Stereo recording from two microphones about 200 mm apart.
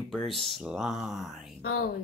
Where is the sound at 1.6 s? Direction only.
55° left (ahead or behind).